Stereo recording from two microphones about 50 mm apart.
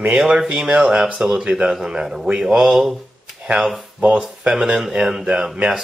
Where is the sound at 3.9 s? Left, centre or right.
Centre.